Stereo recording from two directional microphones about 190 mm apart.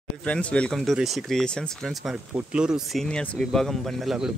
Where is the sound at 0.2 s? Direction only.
5° left (ahead or behind).